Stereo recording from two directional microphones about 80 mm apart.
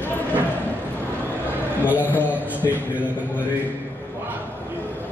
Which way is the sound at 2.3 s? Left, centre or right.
Centre.